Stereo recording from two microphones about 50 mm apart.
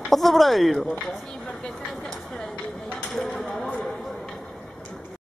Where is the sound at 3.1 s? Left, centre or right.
Centre.